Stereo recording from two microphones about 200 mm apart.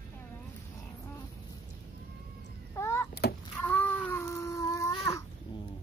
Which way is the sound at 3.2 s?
55° left (ahead or behind).